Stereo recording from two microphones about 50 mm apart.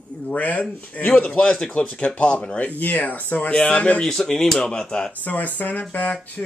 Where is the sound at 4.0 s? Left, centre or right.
Centre.